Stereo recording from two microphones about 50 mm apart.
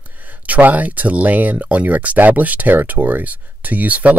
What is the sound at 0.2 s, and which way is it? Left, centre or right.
Speech, right.